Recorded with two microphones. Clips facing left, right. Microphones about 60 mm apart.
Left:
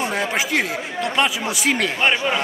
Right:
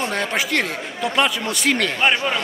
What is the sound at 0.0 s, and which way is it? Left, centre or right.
Speech, centre.